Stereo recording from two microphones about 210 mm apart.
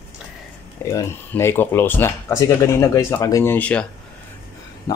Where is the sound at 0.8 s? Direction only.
15° left (ahead or behind).